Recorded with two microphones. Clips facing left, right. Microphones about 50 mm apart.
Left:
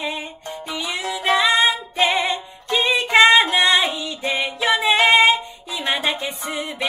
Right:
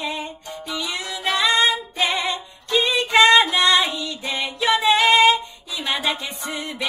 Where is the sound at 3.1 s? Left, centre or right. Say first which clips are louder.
Left 1 dB; left.